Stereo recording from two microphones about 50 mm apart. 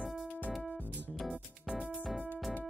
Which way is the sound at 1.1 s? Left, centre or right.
Centre.